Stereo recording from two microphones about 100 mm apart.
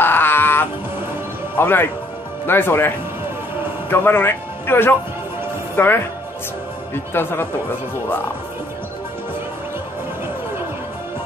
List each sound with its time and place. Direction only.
0.0 s a sound: 20° left (ahead or behind)
1.6 s speech: 20° left (ahead or behind)
3.9 s speech: 20° left (ahead or behind)
7.2 s speech: 20° left (ahead or behind)